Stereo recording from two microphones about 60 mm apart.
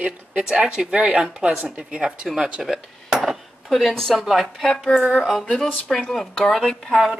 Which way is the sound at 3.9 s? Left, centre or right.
Centre.